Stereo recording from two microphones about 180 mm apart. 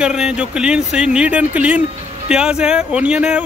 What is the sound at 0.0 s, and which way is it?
Speech, 5° right (ahead or behind).